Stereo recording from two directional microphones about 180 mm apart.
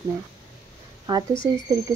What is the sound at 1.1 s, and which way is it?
Speech, 25° right (ahead or behind).